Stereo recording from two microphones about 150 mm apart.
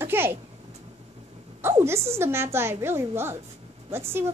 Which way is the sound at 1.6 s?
15° right (ahead or behind).